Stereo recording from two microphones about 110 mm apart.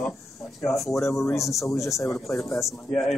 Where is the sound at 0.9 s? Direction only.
25° left (ahead or behind).